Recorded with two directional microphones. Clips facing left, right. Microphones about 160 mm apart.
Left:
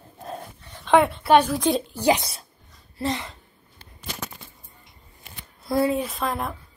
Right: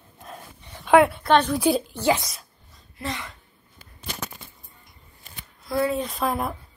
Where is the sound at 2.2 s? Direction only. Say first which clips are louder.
Left 1 dB; 30° left (ahead or behind).